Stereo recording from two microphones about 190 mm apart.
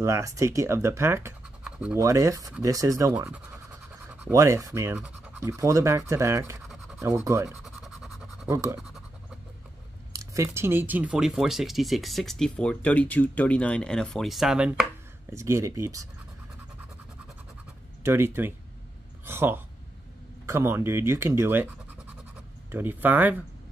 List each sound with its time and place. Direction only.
0.0 s speech: 15° right (ahead or behind)
7.6 s scratch: centre (ahead or behind)
8.5 s speech: 15° right (ahead or behind)
10.1 s speech: 15° right (ahead or behind)
18.0 s speech: 10° right (ahead or behind)
22.7 s speech: 10° right (ahead or behind)